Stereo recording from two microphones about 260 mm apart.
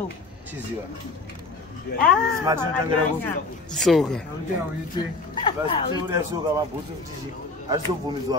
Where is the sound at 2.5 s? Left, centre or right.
Centre.